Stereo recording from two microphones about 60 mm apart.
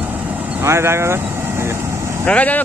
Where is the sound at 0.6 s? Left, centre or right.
Right.